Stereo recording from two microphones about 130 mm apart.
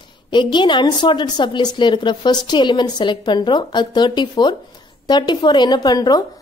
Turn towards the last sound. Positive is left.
turn(degrees=30)  # may be behind; listen again after turning